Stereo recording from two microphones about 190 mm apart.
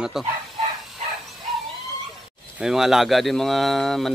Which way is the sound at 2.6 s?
Centre (ahead or behind).